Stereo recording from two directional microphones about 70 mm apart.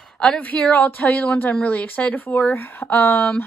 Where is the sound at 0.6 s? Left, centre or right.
Left.